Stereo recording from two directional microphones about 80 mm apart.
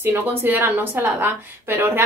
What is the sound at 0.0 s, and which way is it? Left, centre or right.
A woman's voice, right.